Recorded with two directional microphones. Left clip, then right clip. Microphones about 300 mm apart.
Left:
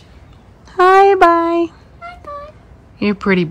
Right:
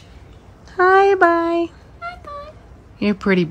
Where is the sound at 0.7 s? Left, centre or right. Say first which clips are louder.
Left 4 dB; centre.